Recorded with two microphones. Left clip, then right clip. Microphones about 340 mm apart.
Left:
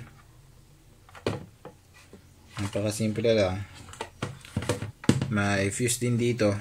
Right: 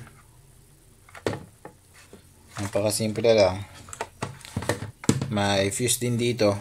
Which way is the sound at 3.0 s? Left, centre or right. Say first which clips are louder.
Right 5 dB; centre.